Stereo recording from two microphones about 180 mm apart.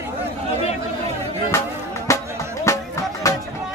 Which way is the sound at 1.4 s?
15° left (ahead or behind).